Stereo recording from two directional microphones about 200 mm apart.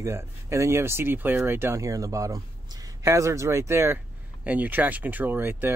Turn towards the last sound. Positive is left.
turn(degrees=-10)  # may be behind; listen again after turning